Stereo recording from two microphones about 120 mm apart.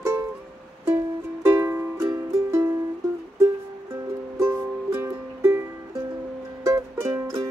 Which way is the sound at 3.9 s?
20° right (ahead or behind).